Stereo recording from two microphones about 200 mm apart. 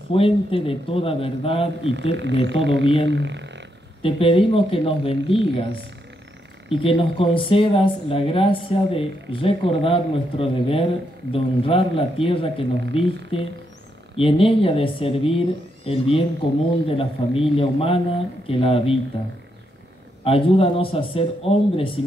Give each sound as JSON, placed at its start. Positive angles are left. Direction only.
{"t": 0.1, "sound": "speech", "side_deg": 25}
{"t": 2.1, "sound": "speech", "side_deg": -60}
{"t": 2.8, "sound": "speech", "side_deg": 25}
{"t": 3.1, "sound": "speech", "side_deg": -60}
{"t": 4.0, "sound": "speech", "side_deg": 25}
{"t": 6.8, "sound": "speech", "side_deg": 25}
{"t": 20.2, "sound": "speech", "side_deg": 25}